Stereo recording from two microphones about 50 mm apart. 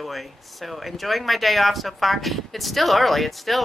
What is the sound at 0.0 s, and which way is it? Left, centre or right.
Speech, centre.